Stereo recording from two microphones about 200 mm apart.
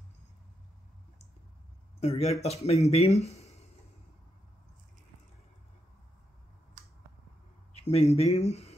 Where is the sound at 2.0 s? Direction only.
30° left (ahead or behind).